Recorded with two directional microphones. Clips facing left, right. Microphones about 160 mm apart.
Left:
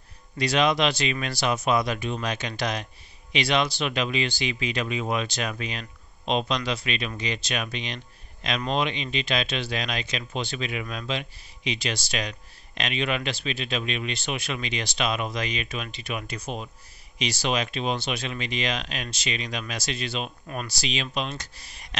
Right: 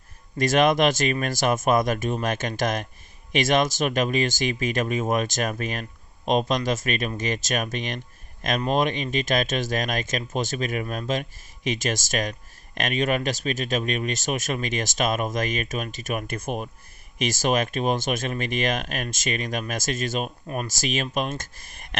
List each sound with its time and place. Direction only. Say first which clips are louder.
0.4 s speech: right 3 dB; 50° right (ahead or behind)